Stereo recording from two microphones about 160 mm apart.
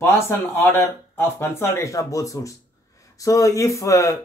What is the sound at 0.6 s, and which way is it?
A man's voice, 15° left (ahead or behind).